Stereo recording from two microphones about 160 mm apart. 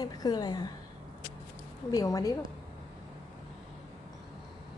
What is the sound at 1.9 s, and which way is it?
Speech, 20° left (ahead or behind).